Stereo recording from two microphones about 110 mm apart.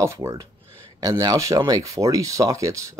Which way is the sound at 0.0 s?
25° right (ahead or behind).